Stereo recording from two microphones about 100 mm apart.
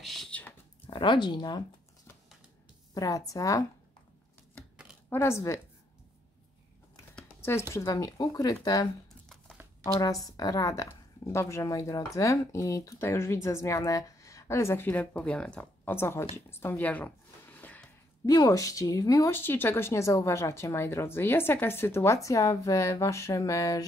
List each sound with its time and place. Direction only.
0.0 s speech: centre (ahead or behind)
0.3 s a sound: 15° left (ahead or behind)
0.8 s speech: 50° left (ahead or behind)
2.9 s speech: 35° left (ahead or behind)
5.1 s speech: 25° left (ahead or behind)
7.7 s speech: 35° left (ahead or behind)
10.2 s speech: 40° left (ahead or behind)
14.9 s speech: 15° left (ahead or behind)
15.9 s speech: 25° left (ahead or behind)
16.4 s a sound: 25° left (ahead or behind)
18.2 s speech: 40° left (ahead or behind)
19.3 s speech: 20° left (ahead or behind)